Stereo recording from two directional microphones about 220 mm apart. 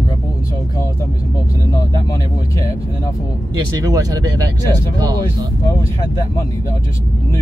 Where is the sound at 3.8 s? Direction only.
15° right (ahead or behind).